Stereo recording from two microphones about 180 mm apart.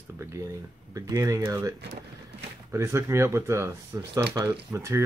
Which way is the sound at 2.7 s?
15° right (ahead or behind).